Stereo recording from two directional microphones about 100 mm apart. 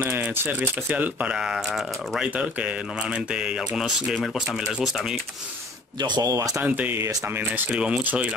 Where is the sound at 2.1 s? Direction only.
10° right (ahead or behind).